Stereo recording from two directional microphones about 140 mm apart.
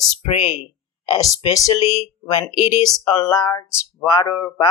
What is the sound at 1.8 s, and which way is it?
Speech, 50° left (ahead or behind).